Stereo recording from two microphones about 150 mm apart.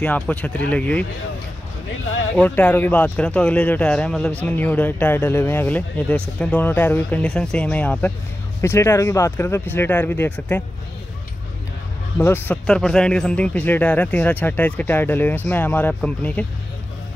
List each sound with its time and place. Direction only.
0.0 s speech: 10° left (ahead or behind)
2.3 s speech: 10° left (ahead or behind)
12.2 s speech: 15° left (ahead or behind)